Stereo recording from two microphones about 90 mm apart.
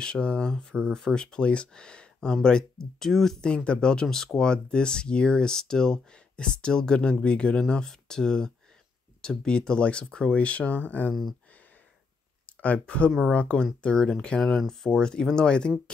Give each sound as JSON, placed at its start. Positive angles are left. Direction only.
{"t": 0.0, "sound": "speech", "side_deg": 10}
{"t": 12.6, "sound": "speech", "side_deg": 15}